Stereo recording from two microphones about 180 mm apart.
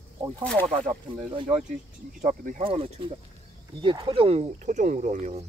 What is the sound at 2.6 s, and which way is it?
Speech, 30° right (ahead or behind).